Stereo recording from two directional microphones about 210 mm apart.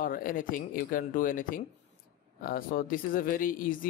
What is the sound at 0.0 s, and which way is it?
Speech, 40° left (ahead or behind).